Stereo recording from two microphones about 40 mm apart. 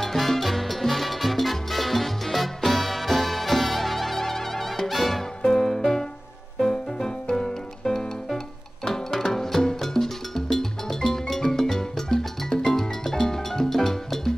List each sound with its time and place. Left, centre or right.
0.0 s salsa music: centre
5.4 s music: centre